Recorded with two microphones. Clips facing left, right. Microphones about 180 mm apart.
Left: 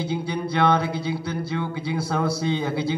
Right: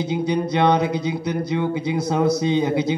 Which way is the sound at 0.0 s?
20° right (ahead or behind).